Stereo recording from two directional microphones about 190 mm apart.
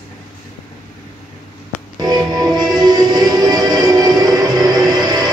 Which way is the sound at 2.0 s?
20° right (ahead or behind).